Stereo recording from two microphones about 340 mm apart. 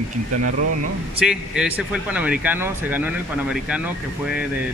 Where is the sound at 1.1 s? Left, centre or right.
Centre.